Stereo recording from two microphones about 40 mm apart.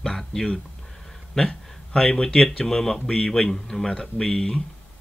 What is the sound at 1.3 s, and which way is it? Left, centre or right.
Speech, centre.